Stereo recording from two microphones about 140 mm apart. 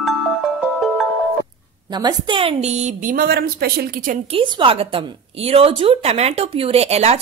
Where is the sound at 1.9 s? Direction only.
30° right (ahead or behind); by 4.2 s 85° right.